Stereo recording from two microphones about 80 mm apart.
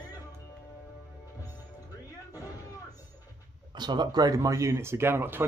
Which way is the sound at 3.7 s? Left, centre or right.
Right.